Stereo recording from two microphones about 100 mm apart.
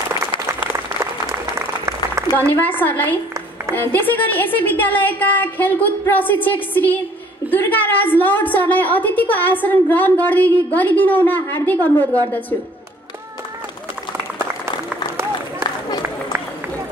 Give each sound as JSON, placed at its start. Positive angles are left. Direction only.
{"t": 1.3, "sound": "applause", "side_deg": -30}
{"t": 2.8, "sound": "a woman's voice", "side_deg": 20}